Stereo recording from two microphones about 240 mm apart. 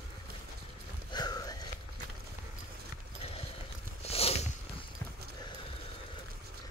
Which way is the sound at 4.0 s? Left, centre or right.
Left.